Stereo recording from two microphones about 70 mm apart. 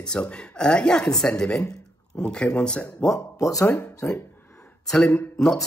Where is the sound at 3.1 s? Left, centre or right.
Left.